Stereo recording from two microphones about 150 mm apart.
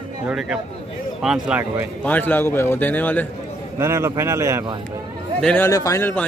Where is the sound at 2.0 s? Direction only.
10° left (ahead or behind).